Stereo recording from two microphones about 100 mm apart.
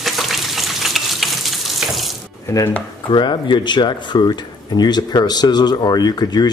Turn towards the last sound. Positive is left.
turn(degrees=45)  # may be behind; listen again after turning